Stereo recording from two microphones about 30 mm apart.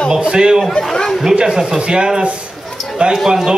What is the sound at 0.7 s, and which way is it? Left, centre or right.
Speech, left.